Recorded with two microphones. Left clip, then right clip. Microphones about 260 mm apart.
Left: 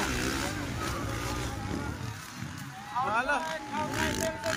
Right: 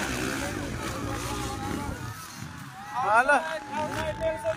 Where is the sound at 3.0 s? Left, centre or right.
Centre.